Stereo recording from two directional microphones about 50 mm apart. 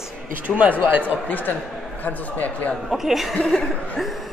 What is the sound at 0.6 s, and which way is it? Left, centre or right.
Speech, right.